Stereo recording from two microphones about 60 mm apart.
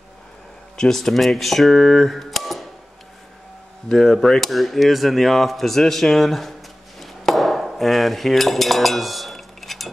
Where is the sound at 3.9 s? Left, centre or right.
Centre.